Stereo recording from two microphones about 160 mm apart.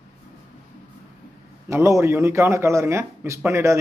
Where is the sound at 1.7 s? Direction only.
15° right (ahead or behind).